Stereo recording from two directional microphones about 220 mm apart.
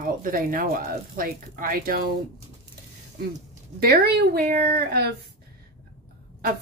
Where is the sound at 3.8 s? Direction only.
45° right (ahead or behind).